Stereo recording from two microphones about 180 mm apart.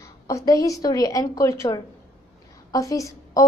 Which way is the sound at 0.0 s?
15° left (ahead or behind).